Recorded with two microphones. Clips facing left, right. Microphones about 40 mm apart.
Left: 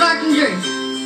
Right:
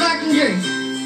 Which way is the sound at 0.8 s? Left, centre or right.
Centre.